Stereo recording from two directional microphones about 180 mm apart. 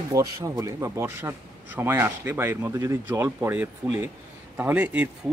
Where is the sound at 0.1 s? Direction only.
20° right (ahead or behind).